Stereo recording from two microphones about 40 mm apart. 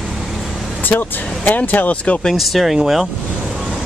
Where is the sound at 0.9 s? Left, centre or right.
Left.